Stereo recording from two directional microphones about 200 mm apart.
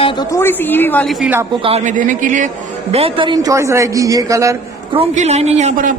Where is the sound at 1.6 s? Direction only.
30° right (ahead or behind).